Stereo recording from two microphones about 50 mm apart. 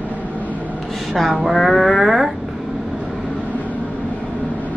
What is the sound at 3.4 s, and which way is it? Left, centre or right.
Vehicle, left.